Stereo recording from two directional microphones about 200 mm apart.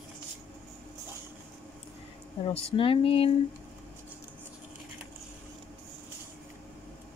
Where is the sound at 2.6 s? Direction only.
25° left (ahead or behind).